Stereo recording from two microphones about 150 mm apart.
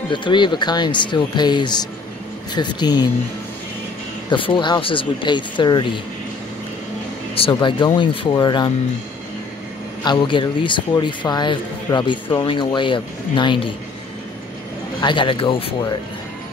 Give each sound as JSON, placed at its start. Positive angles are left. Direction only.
{"t": 0.1, "sound": "speech", "side_deg": 30}
{"t": 4.3, "sound": "speech", "side_deg": 30}
{"t": 7.3, "sound": "speech", "side_deg": 35}
{"t": 10.0, "sound": "speech", "side_deg": 35}
{"t": 15.0, "sound": "speech", "side_deg": 30}